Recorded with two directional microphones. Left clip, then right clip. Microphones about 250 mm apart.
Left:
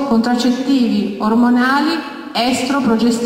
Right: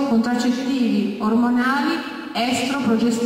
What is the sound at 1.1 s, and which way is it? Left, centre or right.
Speech, centre.